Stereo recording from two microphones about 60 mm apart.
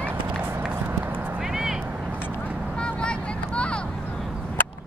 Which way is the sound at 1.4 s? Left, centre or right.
Centre.